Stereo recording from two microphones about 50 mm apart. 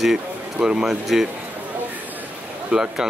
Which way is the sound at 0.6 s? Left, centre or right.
Centre.